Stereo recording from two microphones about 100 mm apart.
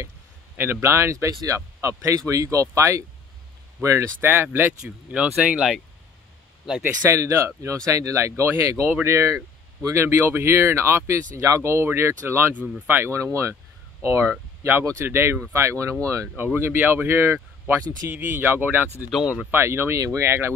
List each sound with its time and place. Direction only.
0.6 s speech: 25° right (ahead or behind)
4.3 s speech: 20° right (ahead or behind)
6.8 s speech: 30° right (ahead or behind)
19.0 s speech: 5° right (ahead or behind)
19.5 s speech: 25° right (ahead or behind)